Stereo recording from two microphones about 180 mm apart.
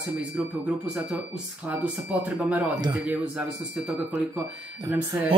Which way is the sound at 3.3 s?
5° right (ahead or behind).